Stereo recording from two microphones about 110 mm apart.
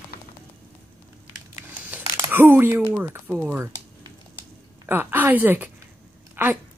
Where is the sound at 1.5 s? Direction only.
20° right (ahead or behind).